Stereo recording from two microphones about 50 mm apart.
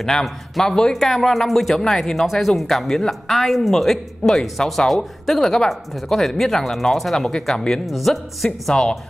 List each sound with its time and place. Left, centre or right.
0.0 s a man's voice: centre
8.7 s speech: centre